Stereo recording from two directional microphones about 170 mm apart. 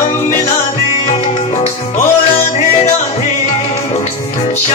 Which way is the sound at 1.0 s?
40° left (ahead or behind).